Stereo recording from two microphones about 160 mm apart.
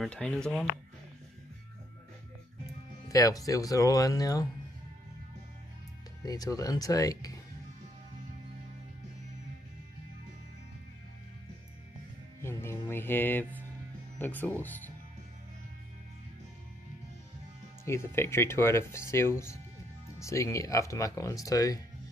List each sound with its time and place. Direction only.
0.0 s speech: 5° left (ahead or behind)
3.1 s speech: 20° left (ahead or behind)
6.2 s speech: 20° left (ahead or behind)
12.4 s music: 15° left (ahead or behind)
14.1 s speech: 10° left (ahead or behind)
17.8 s speech: 15° left (ahead or behind)